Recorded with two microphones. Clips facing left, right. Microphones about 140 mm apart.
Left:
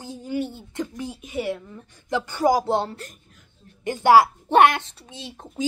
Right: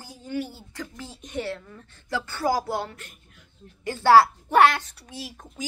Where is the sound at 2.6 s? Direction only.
25° left (ahead or behind).